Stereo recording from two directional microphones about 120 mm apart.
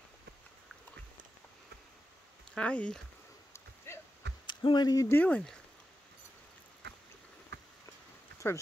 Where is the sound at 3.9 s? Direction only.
20° left (ahead or behind).